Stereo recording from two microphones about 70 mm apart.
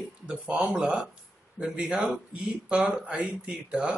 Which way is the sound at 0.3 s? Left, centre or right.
Centre.